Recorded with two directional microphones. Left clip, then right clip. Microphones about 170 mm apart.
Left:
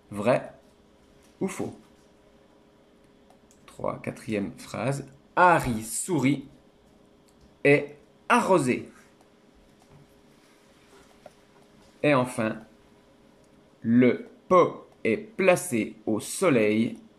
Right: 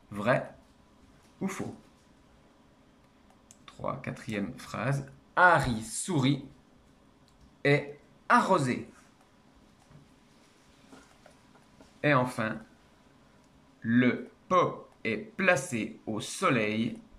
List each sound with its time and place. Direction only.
0.1 s speech: 20° left (ahead or behind)
1.4 s speech: 20° left (ahead or behind)
3.6 s speech: 20° left (ahead or behind)
7.6 s speech: 15° left (ahead or behind)
12.0 s speech: 20° left (ahead or behind)
13.8 s speech: 20° left (ahead or behind)